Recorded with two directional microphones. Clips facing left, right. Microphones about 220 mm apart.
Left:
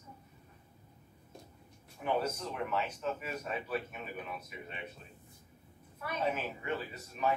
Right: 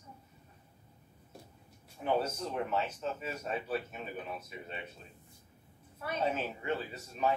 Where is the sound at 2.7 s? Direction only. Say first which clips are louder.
Right 1 dB; 25° right (ahead or behind).